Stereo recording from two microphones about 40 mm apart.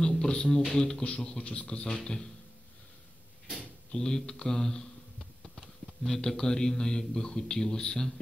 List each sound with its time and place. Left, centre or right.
0.0 s music: centre
0.7 s speech: left
3.9 s a man's voice: centre
6.0 s a man's voice: centre